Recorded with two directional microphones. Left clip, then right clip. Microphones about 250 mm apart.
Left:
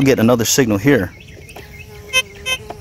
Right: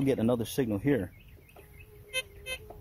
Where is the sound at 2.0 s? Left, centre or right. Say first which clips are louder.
Left 18 dB; centre.